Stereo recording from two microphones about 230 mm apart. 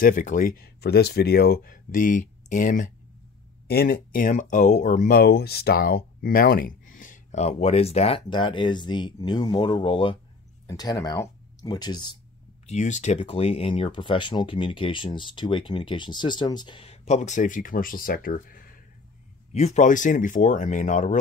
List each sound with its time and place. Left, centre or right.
0.0 s speech: left; by 12.2 s centre
12.6 s speech: left